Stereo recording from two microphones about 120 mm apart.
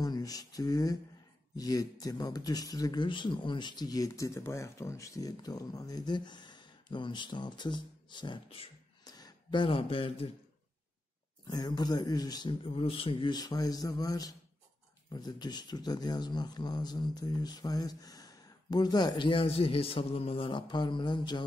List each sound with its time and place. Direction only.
0.0 s a sound: 30° left (ahead or behind)
1.6 s speech: 30° left (ahead or behind)
9.0 s speech: 35° left (ahead or behind); by 10.3 s 50° left (ahead or behind)
11.4 s speech: 35° left (ahead or behind)
13.4 s speech: 30° left (ahead or behind)